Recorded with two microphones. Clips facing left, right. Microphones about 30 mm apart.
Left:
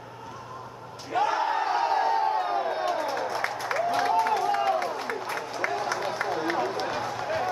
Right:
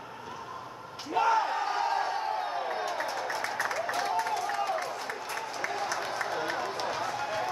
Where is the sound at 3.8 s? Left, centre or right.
Left.